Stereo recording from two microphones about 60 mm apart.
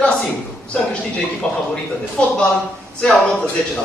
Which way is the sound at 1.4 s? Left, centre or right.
Left.